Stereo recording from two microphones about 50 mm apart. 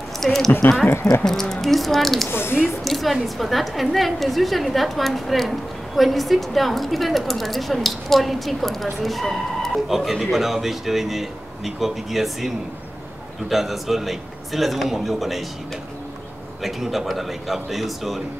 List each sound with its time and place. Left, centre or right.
0.2 s a woman's voice: centre
2.2 s speech: left
2.8 s a woman's voice: centre
9.8 s a woman's voice: centre
16.6 s a woman's voice: centre